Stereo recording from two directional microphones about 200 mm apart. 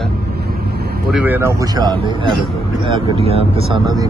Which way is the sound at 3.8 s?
20° right (ahead or behind).